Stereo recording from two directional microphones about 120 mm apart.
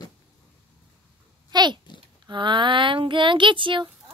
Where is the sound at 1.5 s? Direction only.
35° right (ahead or behind).